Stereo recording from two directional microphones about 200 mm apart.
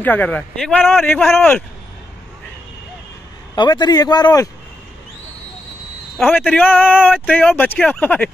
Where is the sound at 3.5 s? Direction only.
20° left (ahead or behind).